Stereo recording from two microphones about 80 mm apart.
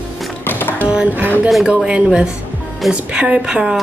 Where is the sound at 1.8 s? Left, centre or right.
Centre.